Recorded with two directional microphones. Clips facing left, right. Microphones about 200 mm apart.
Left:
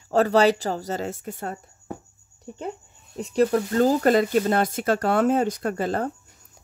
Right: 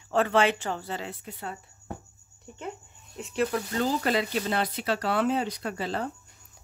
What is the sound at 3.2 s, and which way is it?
Speech, 35° left (ahead or behind).